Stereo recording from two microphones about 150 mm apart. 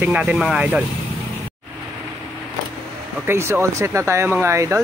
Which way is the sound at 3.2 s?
15° right (ahead or behind).